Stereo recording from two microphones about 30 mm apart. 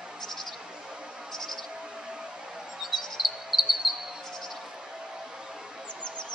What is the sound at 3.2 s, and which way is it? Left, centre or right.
Cricket, centre.